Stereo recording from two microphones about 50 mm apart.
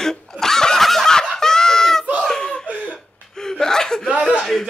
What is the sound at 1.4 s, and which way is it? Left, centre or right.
Fowl, centre.